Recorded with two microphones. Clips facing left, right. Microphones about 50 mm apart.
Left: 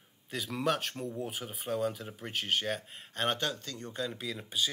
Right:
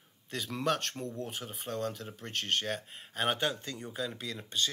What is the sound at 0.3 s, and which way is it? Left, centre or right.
Speech, centre.